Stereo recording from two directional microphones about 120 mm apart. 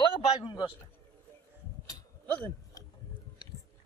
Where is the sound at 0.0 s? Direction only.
40° left (ahead or behind).